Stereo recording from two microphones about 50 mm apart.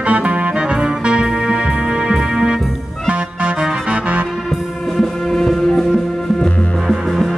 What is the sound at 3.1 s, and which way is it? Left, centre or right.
Organ, right.